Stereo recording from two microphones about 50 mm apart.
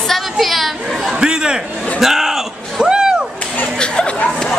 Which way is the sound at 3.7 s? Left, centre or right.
Centre.